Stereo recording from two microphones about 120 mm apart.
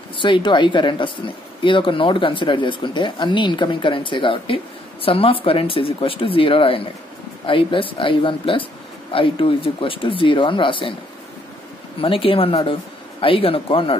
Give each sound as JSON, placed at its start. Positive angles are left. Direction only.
{"t": 0.2, "sound": "speech", "side_deg": 40}
{"t": 12.0, "sound": "speech", "side_deg": 50}